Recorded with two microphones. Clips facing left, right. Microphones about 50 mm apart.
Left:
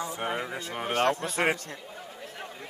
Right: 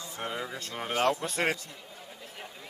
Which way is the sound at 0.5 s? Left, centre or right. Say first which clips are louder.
Left 3 dB; centre.